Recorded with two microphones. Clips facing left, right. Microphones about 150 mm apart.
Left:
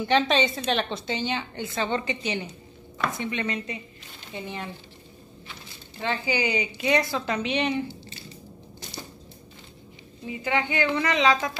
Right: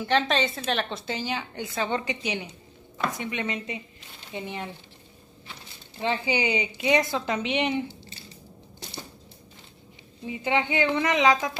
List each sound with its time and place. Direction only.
0.0 s a woman's voice: centre (ahead or behind); by 4.6 s 20° right (ahead or behind)
5.9 s a woman's voice: 25° right (ahead or behind)
10.2 s a woman's voice: 25° right (ahead or behind)